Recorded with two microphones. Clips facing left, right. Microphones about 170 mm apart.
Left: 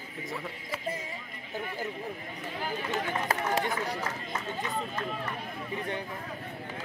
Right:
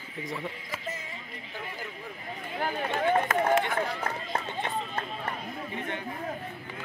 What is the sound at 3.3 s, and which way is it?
Speech, 35° left (ahead or behind).